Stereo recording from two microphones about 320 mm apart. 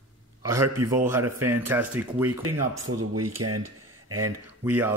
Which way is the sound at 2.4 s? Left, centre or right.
Right.